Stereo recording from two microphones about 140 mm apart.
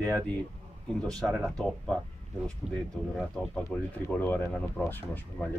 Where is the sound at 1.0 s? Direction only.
5° left (ahead or behind).